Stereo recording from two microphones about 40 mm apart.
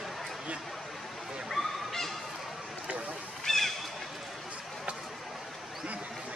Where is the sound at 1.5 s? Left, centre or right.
Centre.